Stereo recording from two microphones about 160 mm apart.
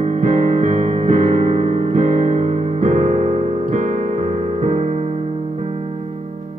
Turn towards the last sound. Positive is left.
turn(degrees=-40)  # may be behind; listen again after turning